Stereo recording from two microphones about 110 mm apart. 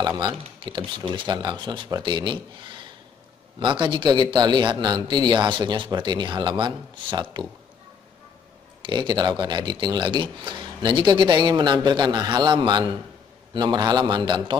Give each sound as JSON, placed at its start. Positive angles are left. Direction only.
{"t": 0.7, "sound": "speech", "side_deg": -45}
{"t": 8.8, "sound": "speech", "side_deg": -45}